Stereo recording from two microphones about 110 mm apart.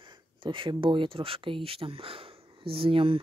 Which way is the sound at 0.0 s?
50° right (ahead or behind).